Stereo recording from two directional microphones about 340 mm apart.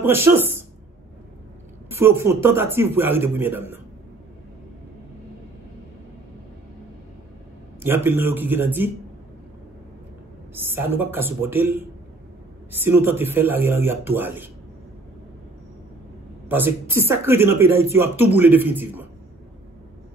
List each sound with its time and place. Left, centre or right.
0.0 s a man's voice: centre
1.9 s a man's voice: centre
7.8 s speech: centre
10.5 s a man's voice: centre
12.8 s speech: centre
16.4 s a man's voice: centre